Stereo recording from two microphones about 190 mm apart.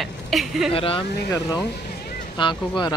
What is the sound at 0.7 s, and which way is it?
Speech, 30° left (ahead or behind).